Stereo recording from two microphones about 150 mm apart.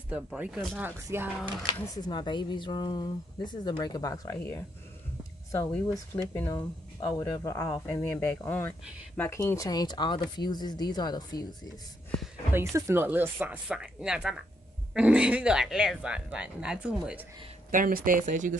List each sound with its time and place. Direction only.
0.1 s speech: 5° right (ahead or behind)
1.7 s speech: 30° left (ahead or behind)
12.5 s speech: 15° right (ahead or behind)
17.6 s speech: 70° right (ahead or behind)